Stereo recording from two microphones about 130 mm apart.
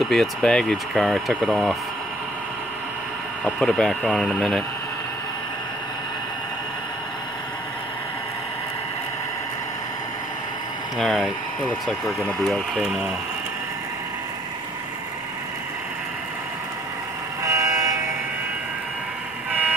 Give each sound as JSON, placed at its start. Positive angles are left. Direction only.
{"t": 0.1, "sound": "speech", "side_deg": 5}
{"t": 3.4, "sound": "speech", "side_deg": 5}
{"t": 11.0, "sound": "speech", "side_deg": 0}
{"t": 17.4, "sound": "vehicle", "side_deg": -25}